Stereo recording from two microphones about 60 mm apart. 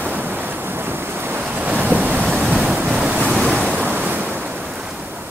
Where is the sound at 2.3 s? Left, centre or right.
Centre.